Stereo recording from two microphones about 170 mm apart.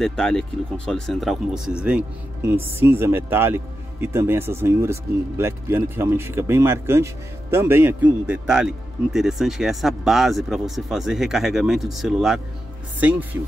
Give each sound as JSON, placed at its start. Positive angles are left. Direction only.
{"t": 0.0, "sound": "speech", "side_deg": 5}